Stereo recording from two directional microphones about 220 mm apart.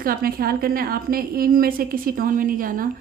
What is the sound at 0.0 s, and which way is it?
A woman's voice, 40° right (ahead or behind).